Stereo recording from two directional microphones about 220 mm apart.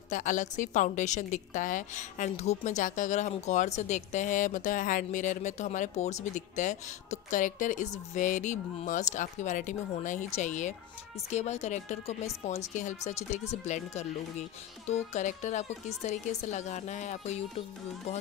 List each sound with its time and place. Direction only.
0.1 s a woman's voice: 35° left (ahead or behind)